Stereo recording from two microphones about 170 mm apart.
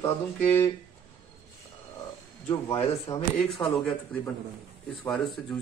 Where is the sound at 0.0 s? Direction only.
15° left (ahead or behind).